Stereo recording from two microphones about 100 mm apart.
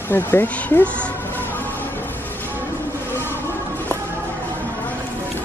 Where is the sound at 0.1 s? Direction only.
20° left (ahead or behind).